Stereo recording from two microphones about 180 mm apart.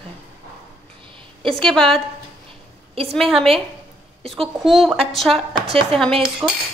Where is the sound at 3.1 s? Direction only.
Centre (ahead or behind).